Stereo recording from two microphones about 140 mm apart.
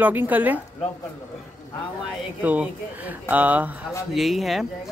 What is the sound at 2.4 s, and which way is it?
Speech, 10° right (ahead or behind).